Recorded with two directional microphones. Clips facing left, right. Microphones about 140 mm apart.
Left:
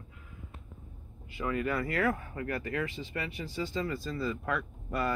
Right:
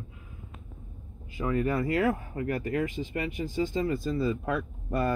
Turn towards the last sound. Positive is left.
turn(degrees=-25)  # may be behind; listen again after turning